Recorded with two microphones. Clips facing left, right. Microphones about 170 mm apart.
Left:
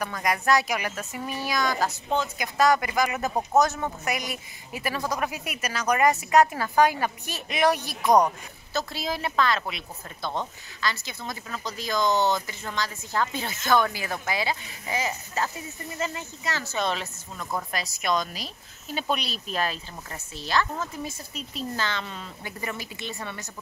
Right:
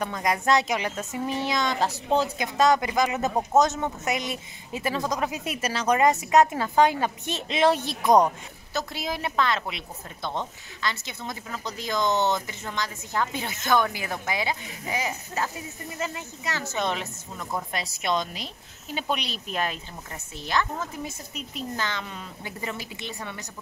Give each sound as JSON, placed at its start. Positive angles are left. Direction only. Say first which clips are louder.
{"t": 0.0, "sound": "a woman's voice", "louder": "right 1 dB", "side_deg": -25}